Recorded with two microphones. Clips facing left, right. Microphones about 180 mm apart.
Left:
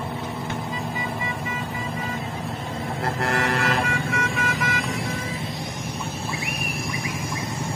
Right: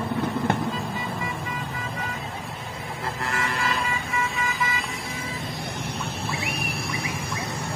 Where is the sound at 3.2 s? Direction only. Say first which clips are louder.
Left 5 dB; 85° left.